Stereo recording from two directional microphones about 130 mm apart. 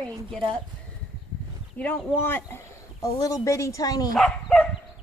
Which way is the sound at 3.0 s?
30° left (ahead or behind).